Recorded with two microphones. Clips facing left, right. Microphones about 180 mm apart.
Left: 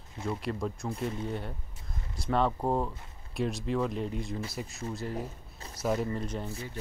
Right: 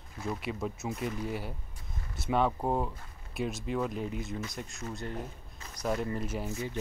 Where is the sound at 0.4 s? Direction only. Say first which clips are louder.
Left 2 dB; 5° right (ahead or behind).